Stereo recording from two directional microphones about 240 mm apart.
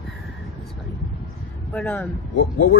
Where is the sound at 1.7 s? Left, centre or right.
Centre.